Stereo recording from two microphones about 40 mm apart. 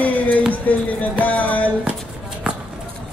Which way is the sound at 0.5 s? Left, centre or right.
Left.